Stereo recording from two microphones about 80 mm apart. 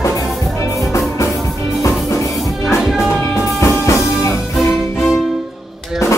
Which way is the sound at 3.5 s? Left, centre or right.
Left.